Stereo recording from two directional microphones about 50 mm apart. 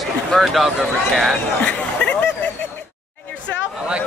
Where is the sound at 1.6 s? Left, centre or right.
Left.